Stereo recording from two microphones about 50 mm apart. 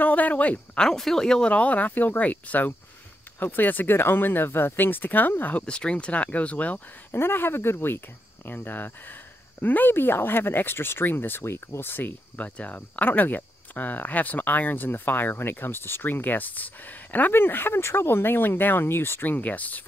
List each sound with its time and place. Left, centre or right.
0.0 s a sound: left
0.7 s speech: centre
1.5 s speech: left
5.7 s speech: left
7.1 s speech: left
11.4 s speech: left
12.4 s speech: left